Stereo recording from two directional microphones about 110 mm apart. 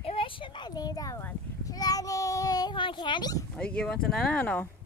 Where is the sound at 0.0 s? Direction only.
55° left (ahead or behind); by 1.2 s 35° left (ahead or behind).